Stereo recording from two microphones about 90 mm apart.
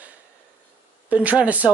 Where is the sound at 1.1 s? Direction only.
15° right (ahead or behind).